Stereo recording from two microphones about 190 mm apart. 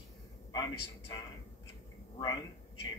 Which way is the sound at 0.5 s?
20° left (ahead or behind).